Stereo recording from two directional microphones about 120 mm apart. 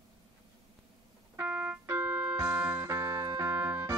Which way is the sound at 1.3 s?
15° right (ahead or behind).